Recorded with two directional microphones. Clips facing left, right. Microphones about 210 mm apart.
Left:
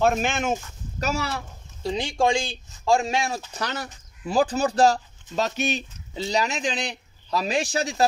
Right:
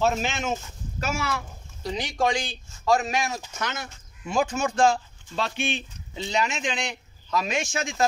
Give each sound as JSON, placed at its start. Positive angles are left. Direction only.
{"t": 0.0, "sound": "speech", "side_deg": 50}
{"t": 1.0, "sound": "speech", "side_deg": 35}